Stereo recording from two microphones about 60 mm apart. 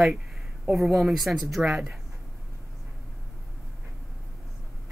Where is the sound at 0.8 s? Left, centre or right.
Centre.